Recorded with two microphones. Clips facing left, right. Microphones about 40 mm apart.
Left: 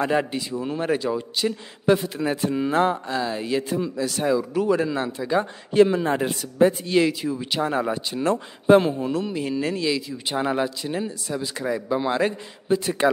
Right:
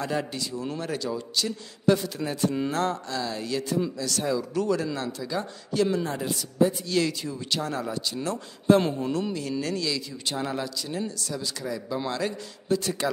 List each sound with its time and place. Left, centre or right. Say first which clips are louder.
0.0 s speech: left 6 dB; left
6.1 s a man's voice: left 4 dB; left
6.9 s speech: left 6 dB; centre
8.8 s speech: left 3 dB; centre
9.3 s speech: left 4 dB; left